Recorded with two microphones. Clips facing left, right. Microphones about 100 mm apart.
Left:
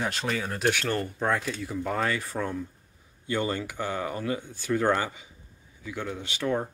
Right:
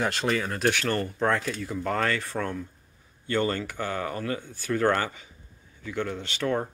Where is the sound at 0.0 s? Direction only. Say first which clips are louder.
Right 3 dB; centre (ahead or behind).